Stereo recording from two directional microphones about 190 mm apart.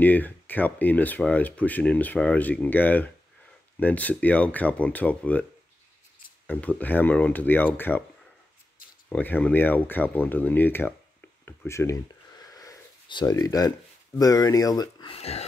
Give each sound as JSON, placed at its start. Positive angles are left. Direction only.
{"t": 0.0, "sound": "speech", "side_deg": 10}
{"t": 6.4, "sound": "speech", "side_deg": 10}
{"t": 9.1, "sound": "speech", "side_deg": 10}